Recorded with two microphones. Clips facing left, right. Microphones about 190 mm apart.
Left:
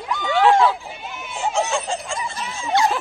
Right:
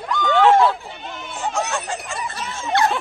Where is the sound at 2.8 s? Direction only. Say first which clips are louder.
Even; 55° right (ahead or behind).